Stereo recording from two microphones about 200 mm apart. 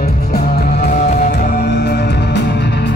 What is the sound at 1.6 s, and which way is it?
Music, 55° left (ahead or behind).